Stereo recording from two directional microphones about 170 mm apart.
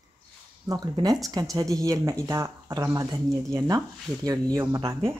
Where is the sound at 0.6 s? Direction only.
20° right (ahead or behind).